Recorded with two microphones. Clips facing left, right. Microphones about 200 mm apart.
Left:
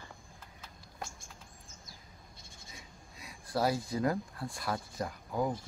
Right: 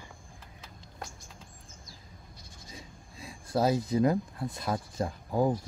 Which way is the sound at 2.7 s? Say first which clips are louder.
Right 7 dB; 25° right (ahead or behind).